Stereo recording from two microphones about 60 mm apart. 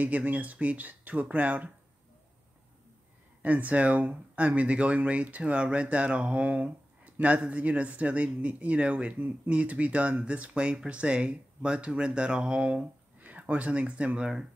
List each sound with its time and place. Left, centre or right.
0.0 s speech: right
3.4 s speech: right